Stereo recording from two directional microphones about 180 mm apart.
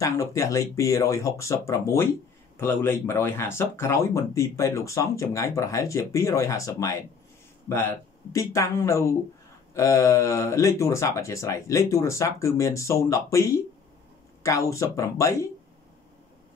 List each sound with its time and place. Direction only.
0.0 s speech: 20° left (ahead or behind)